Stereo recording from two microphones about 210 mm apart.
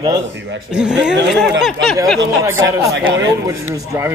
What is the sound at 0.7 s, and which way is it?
Speech, 5° right (ahead or behind).